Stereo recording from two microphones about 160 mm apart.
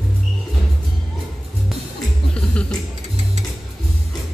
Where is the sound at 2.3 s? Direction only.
5° left (ahead or behind).